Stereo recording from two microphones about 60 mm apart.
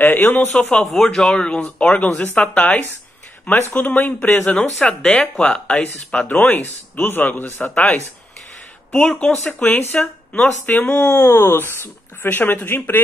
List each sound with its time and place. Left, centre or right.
0.0 s speech: left
0.5 s speech: centre
4.8 s speech: centre; by 13.0 s left